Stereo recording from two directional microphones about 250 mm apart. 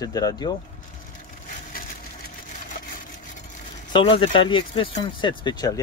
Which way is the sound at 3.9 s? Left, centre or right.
Left.